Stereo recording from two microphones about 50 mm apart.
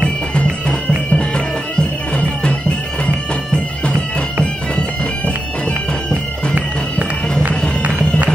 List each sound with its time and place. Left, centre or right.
0.3 s bagpipes: left
4.7 s bagpipes: left